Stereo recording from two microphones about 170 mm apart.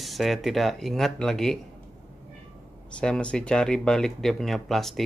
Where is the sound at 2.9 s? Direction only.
5° left (ahead or behind).